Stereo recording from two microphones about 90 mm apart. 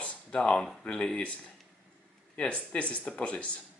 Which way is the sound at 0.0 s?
10° left (ahead or behind).